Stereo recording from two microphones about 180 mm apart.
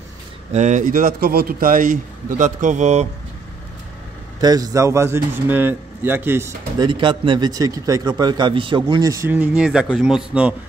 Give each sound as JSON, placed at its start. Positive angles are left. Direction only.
{"t": 0.5, "sound": "a man's voice", "side_deg": -40}
{"t": 4.4, "sound": "speech", "side_deg": -20}
{"t": 6.9, "sound": "a man's voice", "side_deg": -25}